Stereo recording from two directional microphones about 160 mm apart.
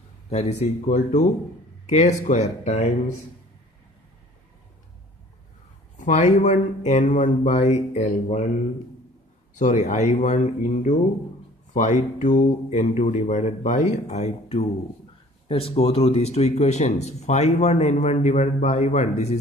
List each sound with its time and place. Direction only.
0.3 s a man's voice: 45° left (ahead or behind)
5.9 s a man's voice: 50° left (ahead or behind)
9.6 s a man's voice: 45° left (ahead or behind)